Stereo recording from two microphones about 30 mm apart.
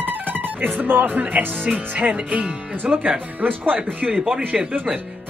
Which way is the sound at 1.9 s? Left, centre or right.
Right.